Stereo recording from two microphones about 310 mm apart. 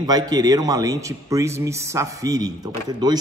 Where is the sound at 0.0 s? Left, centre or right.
Centre.